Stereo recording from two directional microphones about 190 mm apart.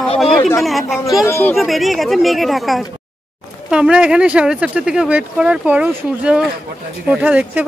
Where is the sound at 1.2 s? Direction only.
15° left (ahead or behind).